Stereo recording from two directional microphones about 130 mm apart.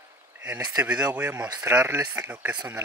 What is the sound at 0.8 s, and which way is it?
Speech, 10° right (ahead or behind).